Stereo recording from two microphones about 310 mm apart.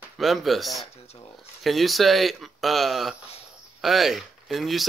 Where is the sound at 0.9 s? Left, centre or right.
Centre.